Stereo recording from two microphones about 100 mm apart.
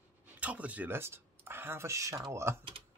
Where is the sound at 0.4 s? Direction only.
15° right (ahead or behind).